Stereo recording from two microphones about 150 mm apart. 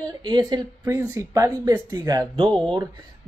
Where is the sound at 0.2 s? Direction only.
30° right (ahead or behind).